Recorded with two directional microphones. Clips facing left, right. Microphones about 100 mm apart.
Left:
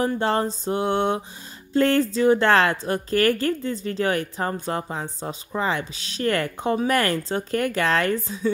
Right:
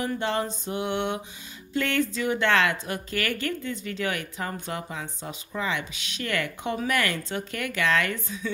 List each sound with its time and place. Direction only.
0.0 s speech: 35° left (ahead or behind)